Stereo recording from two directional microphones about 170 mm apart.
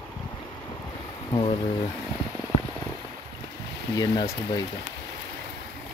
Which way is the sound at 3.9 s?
20° left (ahead or behind).